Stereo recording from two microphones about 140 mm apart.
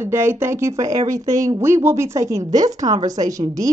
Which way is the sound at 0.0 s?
20° right (ahead or behind).